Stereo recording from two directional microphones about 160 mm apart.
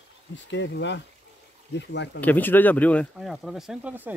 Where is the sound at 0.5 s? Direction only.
90° left.